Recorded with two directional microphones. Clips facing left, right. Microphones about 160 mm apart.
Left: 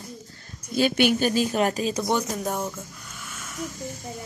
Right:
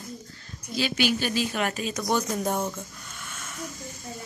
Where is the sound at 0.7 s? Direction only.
55° left (ahead or behind).